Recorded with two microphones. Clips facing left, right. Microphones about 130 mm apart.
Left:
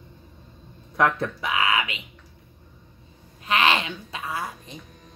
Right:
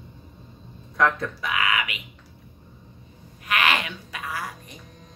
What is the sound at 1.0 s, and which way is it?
Speech, 25° left (ahead or behind).